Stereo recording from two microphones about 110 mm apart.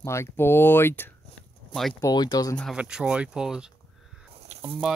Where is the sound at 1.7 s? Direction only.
Centre (ahead or behind).